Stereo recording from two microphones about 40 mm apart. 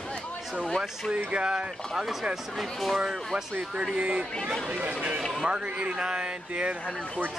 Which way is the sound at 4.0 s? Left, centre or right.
Right.